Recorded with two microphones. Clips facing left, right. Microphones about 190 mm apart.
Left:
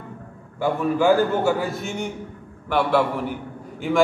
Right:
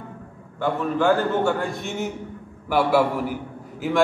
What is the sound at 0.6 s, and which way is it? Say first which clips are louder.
A man's voice: left 2 dB; 10° left (ahead or behind).